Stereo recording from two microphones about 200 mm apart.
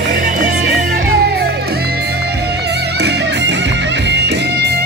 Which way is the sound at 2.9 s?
55° right (ahead or behind).